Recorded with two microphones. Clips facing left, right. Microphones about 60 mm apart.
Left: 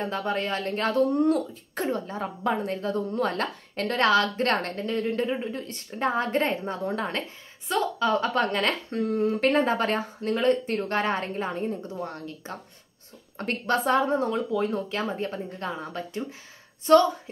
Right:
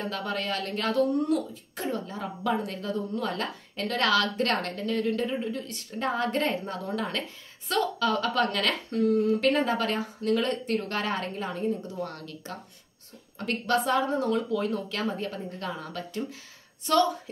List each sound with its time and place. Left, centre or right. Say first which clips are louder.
0.0 s a woman's voice: left 3 dB; left
4.0 s a woman's voice: left 3 dB; left